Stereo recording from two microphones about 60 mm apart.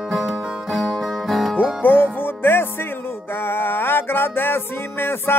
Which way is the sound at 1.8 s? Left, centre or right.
Left.